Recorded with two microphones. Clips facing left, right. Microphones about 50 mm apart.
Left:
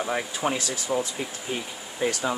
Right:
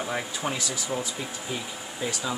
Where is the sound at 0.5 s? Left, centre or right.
Left.